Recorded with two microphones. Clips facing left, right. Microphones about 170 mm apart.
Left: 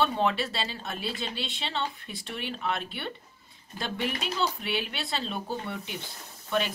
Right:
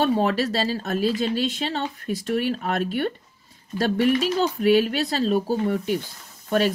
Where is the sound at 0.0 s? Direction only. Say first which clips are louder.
Right 6 dB; 40° right (ahead or behind).